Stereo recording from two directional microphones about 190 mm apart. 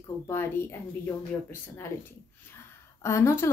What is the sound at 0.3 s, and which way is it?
Speech, 15° left (ahead or behind).